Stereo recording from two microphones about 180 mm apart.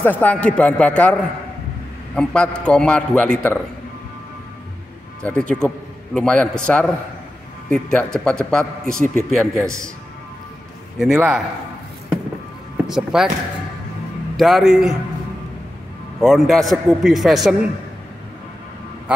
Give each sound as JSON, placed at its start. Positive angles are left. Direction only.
{"t": 0.0, "sound": "a man's voice", "side_deg": 10}
{"t": 2.1, "sound": "a man's voice", "side_deg": 5}
{"t": 5.2, "sound": "a man's voice", "side_deg": 5}
{"t": 9.6, "sound": "a man's voice", "side_deg": -15}
{"t": 11.0, "sound": "a man's voice", "side_deg": -5}
{"t": 12.8, "sound": "a man's voice", "side_deg": -5}
{"t": 14.3, "sound": "a man's voice", "side_deg": 0}
{"t": 16.2, "sound": "a man's voice", "side_deg": 0}